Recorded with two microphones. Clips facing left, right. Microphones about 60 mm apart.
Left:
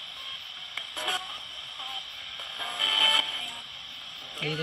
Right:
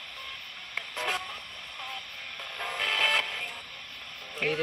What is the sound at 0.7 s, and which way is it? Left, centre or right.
Radio, right.